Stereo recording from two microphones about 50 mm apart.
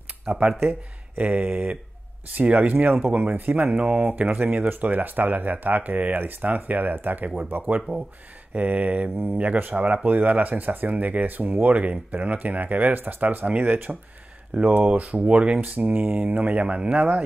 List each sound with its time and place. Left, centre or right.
0.2 s speech: right
2.7 s speech: right